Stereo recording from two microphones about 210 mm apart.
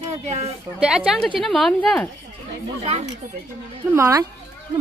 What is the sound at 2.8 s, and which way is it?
Speech, 30° right (ahead or behind).